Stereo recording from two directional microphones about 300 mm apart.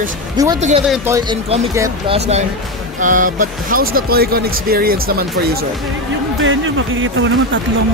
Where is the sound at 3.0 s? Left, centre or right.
Right.